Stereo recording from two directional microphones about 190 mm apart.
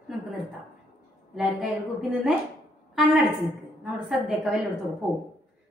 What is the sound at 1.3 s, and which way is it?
A woman's voice, 5° right (ahead or behind).